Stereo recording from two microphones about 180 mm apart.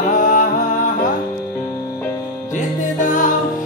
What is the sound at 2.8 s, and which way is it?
Music, 45° left (ahead or behind).